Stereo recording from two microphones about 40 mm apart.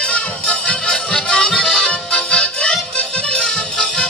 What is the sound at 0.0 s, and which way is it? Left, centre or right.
Music, left.